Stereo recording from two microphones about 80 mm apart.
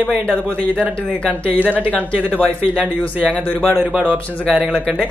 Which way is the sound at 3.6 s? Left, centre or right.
Centre.